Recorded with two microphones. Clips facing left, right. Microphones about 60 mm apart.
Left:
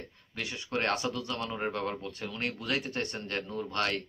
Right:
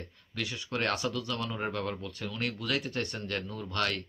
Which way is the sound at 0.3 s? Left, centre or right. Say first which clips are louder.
Even; left.